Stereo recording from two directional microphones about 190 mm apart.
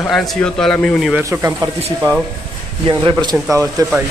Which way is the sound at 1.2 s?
15° right (ahead or behind).